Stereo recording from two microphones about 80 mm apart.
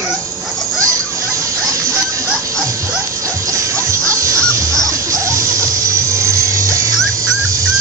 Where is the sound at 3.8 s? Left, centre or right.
Right.